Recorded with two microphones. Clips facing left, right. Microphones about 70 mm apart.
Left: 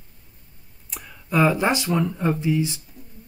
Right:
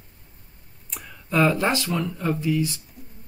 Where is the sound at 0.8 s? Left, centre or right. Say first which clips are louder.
Even; centre.